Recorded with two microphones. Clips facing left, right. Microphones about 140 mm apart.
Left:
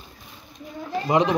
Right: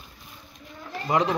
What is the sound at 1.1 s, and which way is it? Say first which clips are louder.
Speech: left 3 dB; 20° left (ahead or behind).